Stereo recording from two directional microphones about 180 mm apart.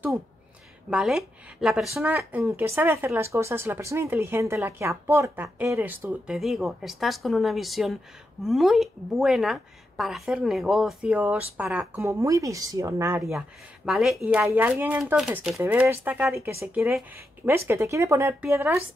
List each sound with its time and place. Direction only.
0.8 s a woman's voice: 5° right (ahead or behind)
13.2 s speech: centre (ahead or behind)
17.6 s speech: 15° right (ahead or behind)